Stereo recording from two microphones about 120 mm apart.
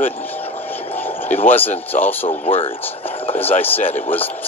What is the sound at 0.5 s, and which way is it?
Music, 15° left (ahead or behind).